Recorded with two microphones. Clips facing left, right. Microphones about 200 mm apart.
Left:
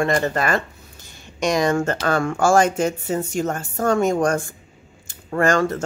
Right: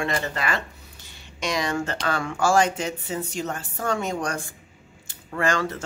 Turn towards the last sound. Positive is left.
turn(degrees=45)  # may be behind; listen again after turning